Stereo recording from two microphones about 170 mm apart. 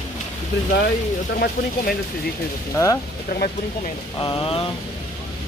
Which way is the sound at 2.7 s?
20° left (ahead or behind).